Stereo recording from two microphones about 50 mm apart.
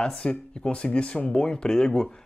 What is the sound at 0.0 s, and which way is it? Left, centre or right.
Speech, centre.